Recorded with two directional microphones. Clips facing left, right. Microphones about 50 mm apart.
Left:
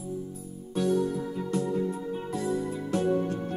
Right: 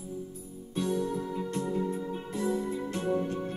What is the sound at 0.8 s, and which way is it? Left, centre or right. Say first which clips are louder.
Music: left 4 dB; centre.